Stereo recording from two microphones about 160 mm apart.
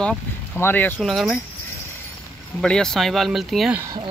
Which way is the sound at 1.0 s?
Centre (ahead or behind).